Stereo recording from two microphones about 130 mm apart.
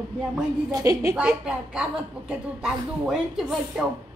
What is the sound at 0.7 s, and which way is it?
Speech, 25° right (ahead or behind).